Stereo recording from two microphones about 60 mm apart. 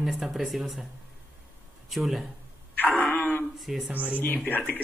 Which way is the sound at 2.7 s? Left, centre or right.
Left.